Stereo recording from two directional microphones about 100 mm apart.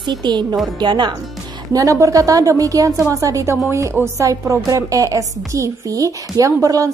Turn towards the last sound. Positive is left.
turn(degrees=-35)  # may be behind; listen again after turning